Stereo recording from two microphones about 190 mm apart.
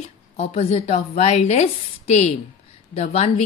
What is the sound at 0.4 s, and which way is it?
A woman's voice, 35° left (ahead or behind).